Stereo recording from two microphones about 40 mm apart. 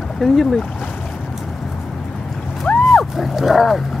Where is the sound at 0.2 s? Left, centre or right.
Centre.